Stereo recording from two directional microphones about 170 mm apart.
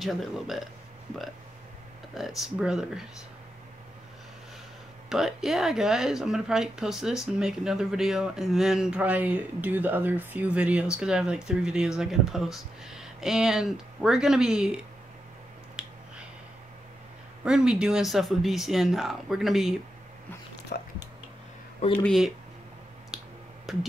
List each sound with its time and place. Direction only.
0.0 s speech: centre (ahead or behind)
2.1 s speech: centre (ahead or behind)
5.1 s speech: centre (ahead or behind)
15.8 s finger snapping: 5° right (ahead or behind)
17.5 s speech: 5° right (ahead or behind)
20.7 s speech: 65° left (ahead or behind)
22.0 s speech: centre (ahead or behind)
23.1 s finger snapping: centre (ahead or behind)